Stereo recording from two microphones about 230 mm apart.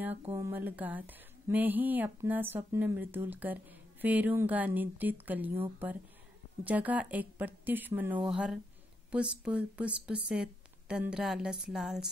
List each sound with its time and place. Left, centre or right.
0.3 s a woman's voice: centre